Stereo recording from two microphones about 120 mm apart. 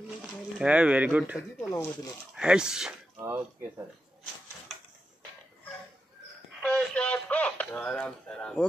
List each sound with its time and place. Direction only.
0.6 s speech: 10° right (ahead or behind)
3.2 s speech: 20° right (ahead or behind)
6.6 s radio: 10° left (ahead or behind)